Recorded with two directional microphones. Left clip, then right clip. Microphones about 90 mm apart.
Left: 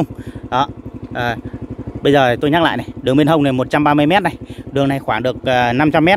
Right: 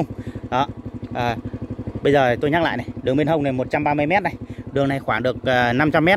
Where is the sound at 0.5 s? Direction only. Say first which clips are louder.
Left 4 dB; centre (ahead or behind).